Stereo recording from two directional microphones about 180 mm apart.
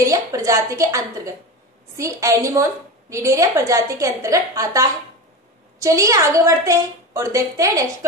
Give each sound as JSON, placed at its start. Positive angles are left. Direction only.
{"t": 0.0, "sound": "a woman's voice", "side_deg": -20}